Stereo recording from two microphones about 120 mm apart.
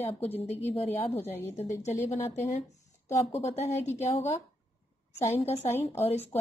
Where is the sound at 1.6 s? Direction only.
70° left (ahead or behind).